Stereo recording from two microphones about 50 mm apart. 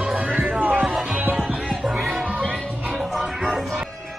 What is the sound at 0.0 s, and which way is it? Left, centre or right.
Music, right.